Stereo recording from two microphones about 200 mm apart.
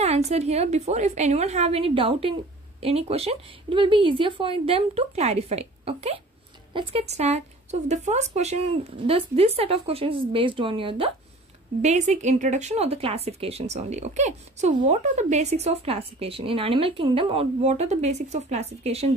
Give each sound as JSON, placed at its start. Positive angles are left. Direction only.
{"t": 0.0, "sound": "a woman's voice", "side_deg": -30}